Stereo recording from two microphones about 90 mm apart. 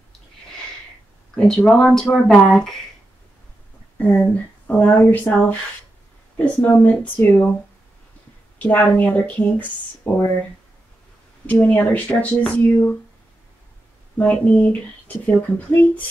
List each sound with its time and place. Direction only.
1.3 s speech: 10° left (ahead or behind)
4.0 s speech: 15° left (ahead or behind)
8.5 s speech: 20° left (ahead or behind)
11.6 s speech: 15° left (ahead or behind)
14.1 s speech: 15° left (ahead or behind)